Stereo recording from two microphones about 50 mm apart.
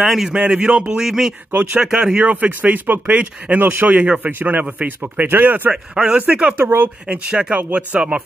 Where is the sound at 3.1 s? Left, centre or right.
Right.